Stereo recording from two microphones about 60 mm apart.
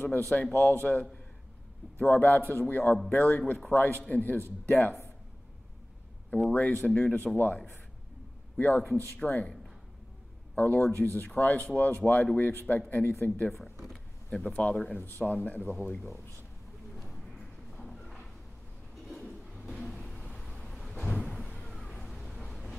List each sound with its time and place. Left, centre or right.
0.0 s a man's voice: left
6.5 s a man's voice: left
10.5 s a man's voice: left
13.5 s a sound: centre
14.5 s speech: left
14.9 s a man's voice: left
16.9 s a sound: centre
20.6 s vehicle: centre
20.9 s cupboard open or close: centre
21.5 s a sound: centre